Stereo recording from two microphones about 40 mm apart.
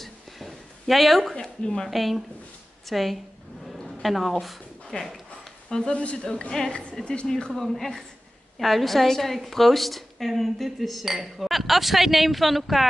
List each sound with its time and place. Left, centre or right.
0.0 s a sound: centre
1.3 s speech: centre
1.9 s a woman's voice: centre
4.9 s a woman's voice: centre
7.5 s a woman's voice: centre